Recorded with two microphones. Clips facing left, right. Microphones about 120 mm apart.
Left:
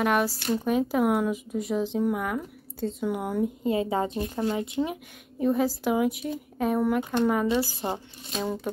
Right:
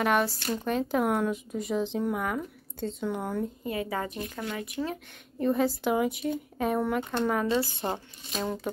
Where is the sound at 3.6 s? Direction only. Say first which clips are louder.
Left 6 dB; 25° left (ahead or behind).